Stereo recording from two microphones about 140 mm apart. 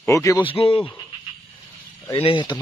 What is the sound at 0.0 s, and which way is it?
Speech, 20° left (ahead or behind).